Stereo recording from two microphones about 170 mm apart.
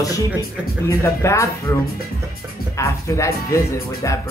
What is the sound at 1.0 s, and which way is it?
Speech, 15° left (ahead or behind).